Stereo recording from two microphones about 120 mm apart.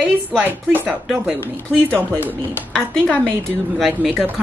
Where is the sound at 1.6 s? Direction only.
15° left (ahead or behind).